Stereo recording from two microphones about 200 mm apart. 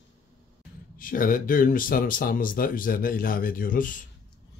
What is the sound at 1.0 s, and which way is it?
Speech, 45° left (ahead or behind).